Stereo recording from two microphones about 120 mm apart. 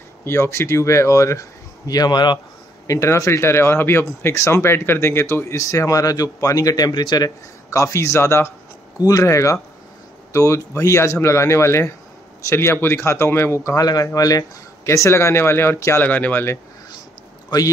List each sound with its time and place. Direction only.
0.2 s speech: 20° left (ahead or behind); by 2.3 s 35° left (ahead or behind)
2.9 s speech: 25° left (ahead or behind)